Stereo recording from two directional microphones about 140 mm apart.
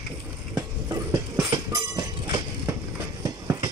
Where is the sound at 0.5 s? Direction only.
30° right (ahead or behind).